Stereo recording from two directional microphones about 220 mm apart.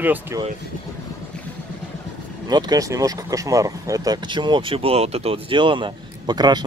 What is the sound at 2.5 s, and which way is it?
Speech, 20° right (ahead or behind).